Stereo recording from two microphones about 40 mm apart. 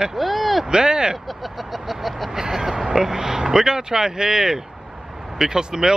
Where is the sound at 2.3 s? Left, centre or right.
Centre.